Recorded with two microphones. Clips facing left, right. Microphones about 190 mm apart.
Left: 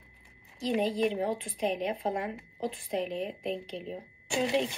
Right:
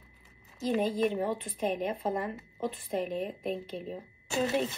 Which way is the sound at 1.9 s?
15° left (ahead or behind).